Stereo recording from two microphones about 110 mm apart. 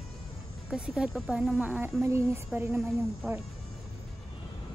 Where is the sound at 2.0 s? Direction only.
25° right (ahead or behind).